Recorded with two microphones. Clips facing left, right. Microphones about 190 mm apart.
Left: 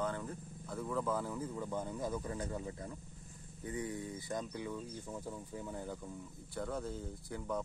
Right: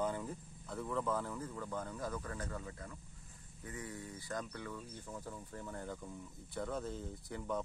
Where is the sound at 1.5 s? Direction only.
15° left (ahead or behind).